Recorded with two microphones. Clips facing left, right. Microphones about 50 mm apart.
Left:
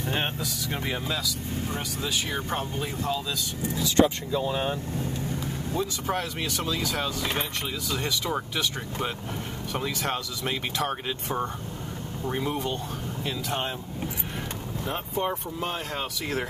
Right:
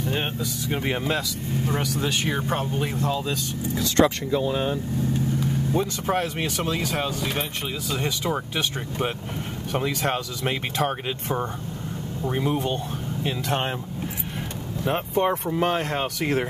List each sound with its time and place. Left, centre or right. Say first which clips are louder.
0.8 s speech: right 5 dB; right
1.8 s speech: right 6 dB; right
2.2 s speech: right 4 dB; right
3.8 s speech: right 2 dB; right
5.8 s speech: right 3 dB; right
7.0 s speech: right 2 dB; centre
9.7 s speech: right 5 dB; right
12.2 s speech: right 4 dB; centre
12.6 s speech: right 3 dB; right
13.5 s speech: right 5 dB; right
14.9 s speech: right 7 dB; right
16.0 s speech: right 6 dB; right